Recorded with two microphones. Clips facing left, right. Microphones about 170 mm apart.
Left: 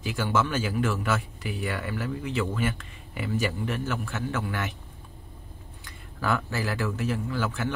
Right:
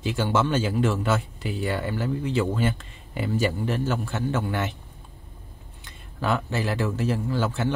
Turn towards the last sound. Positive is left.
turn(degrees=-30)  # may be behind; listen again after turning